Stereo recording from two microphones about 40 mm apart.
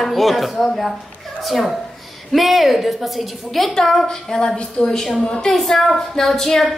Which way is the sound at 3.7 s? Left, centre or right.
Centre.